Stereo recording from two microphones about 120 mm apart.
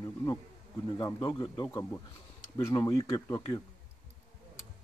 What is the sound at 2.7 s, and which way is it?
Speech, 35° left (ahead or behind).